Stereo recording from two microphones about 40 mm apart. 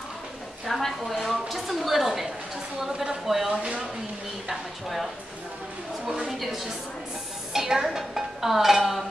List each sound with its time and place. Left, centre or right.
0.7 s a woman's voice: centre
3.5 s speech: right
4.5 s stir: centre
6.0 s a sound: centre
6.3 s a woman's voice: centre
7.5 s speech: centre